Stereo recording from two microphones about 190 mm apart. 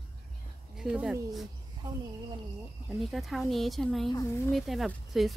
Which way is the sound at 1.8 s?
20° right (ahead or behind).